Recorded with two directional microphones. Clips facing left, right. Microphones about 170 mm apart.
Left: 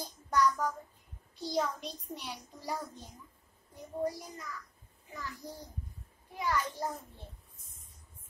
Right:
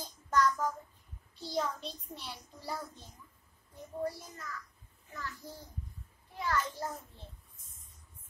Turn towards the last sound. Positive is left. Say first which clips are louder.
# left 1 dB
turn(degrees=15)  # may be behind; listen again after turning